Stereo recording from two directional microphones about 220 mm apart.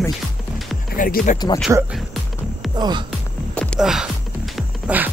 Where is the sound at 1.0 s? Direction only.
40° left (ahead or behind).